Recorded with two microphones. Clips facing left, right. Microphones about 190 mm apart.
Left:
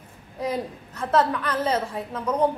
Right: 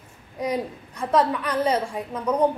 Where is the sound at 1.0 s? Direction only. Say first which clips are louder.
Right 1 dB; 10° right (ahead or behind).